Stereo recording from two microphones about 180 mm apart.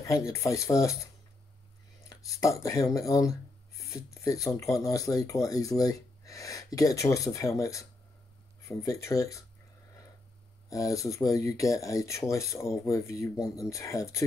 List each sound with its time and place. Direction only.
0.0 s speech: 15° left (ahead or behind)
2.0 s speech: 15° left (ahead or behind)
10.7 s speech: 20° left (ahead or behind)